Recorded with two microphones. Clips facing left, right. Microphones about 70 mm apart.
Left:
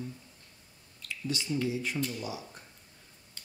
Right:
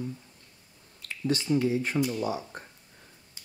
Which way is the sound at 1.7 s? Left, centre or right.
Right.